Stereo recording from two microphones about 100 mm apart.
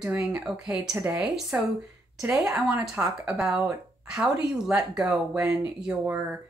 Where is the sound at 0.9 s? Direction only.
25° right (ahead or behind).